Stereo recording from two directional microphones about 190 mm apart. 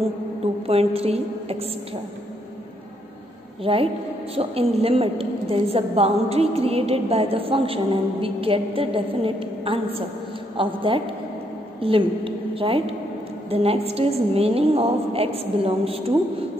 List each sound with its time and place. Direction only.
0.7 s a woman's voice: 30° right (ahead or behind)
3.6 s a woman's voice: 30° right (ahead or behind)